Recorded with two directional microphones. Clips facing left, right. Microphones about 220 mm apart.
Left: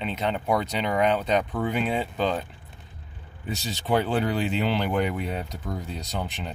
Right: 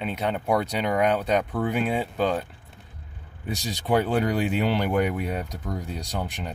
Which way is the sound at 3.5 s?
10° right (ahead or behind).